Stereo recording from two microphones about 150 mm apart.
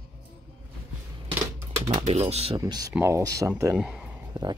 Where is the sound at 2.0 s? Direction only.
45° right (ahead or behind).